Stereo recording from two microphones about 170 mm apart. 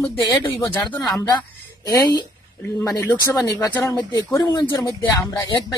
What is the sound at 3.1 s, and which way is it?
Speech, 20° left (ahead or behind).